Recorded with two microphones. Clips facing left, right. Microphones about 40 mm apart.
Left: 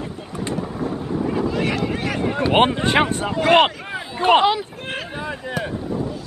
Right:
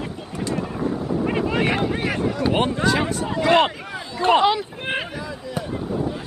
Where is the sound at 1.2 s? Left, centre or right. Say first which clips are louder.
Even; right.